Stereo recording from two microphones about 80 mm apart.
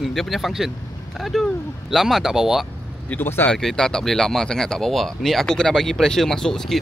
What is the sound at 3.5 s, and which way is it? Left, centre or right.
Speech, centre.